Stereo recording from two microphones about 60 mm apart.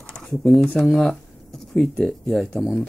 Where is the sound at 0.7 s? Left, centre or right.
Centre.